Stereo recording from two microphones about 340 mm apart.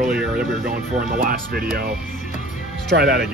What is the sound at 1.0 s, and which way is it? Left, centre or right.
Speech, right.